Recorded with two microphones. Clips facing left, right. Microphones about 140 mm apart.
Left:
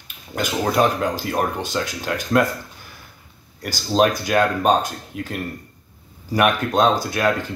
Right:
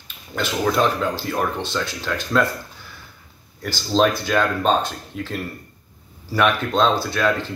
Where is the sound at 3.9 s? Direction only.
10° left (ahead or behind).